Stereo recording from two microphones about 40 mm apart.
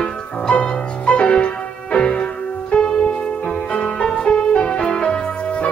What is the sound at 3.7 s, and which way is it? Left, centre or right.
Music, left.